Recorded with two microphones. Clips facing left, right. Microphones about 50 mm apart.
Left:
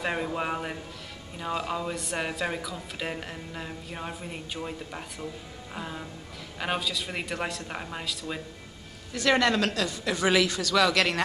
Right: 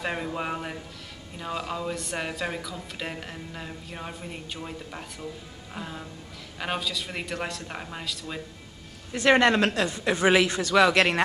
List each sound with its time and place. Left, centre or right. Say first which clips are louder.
0.0 s speech: left 1 dB; centre
9.1 s speech: right 4 dB; right